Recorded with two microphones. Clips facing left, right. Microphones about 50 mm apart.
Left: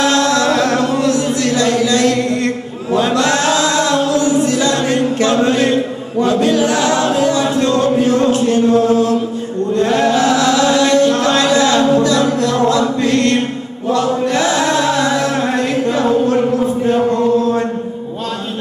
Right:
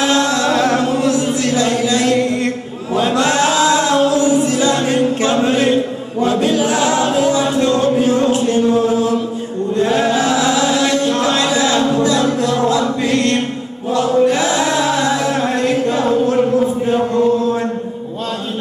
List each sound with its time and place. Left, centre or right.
0.0 s music: centre
0.6 s chant: centre
3.2 s music: right
5.5 s chant: centre
7.4 s a sound: centre
9.8 s chant: centre
13.0 s chant: centre